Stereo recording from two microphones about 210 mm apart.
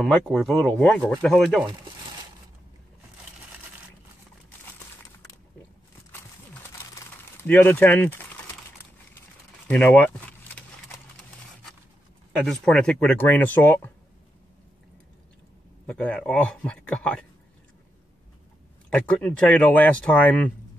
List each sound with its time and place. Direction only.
0.0 s speech: centre (ahead or behind)
7.4 s speech: 10° left (ahead or behind)
9.7 s speech: 10° left (ahead or behind)
12.3 s speech: centre (ahead or behind)
15.9 s speech: 5° left (ahead or behind)
18.9 s speech: 5° left (ahead or behind)